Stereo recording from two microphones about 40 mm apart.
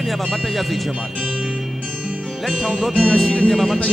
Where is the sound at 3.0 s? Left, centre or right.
Centre.